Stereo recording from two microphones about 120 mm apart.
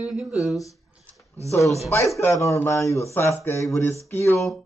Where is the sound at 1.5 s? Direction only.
25° left (ahead or behind).